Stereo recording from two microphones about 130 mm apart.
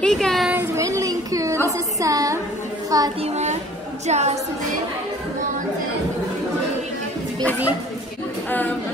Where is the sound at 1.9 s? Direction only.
25° right (ahead or behind).